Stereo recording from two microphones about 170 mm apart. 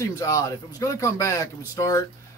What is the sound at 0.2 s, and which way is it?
A man's voice, 20° left (ahead or behind).